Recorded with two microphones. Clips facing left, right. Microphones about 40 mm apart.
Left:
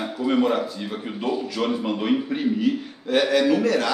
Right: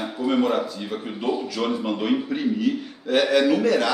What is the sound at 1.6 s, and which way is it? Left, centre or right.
A man's voice, centre.